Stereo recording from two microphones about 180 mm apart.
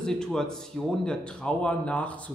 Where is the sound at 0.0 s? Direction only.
5° left (ahead or behind).